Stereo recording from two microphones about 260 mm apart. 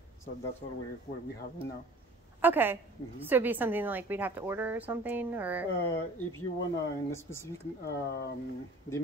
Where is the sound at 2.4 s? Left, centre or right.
Centre.